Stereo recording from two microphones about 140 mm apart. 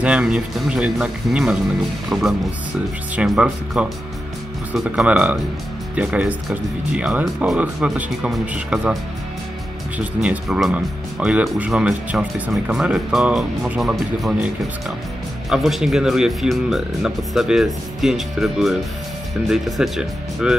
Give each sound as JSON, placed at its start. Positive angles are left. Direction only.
{"t": 0.0, "sound": "speech", "side_deg": -5}
{"t": 9.9, "sound": "speech", "side_deg": -10}
{"t": 15.5, "sound": "speech", "side_deg": -5}